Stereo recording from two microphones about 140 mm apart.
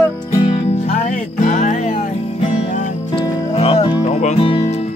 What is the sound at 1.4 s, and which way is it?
Music, 60° left (ahead or behind).